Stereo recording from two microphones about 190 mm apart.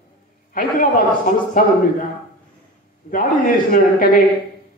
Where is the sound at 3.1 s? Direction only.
45° left (ahead or behind).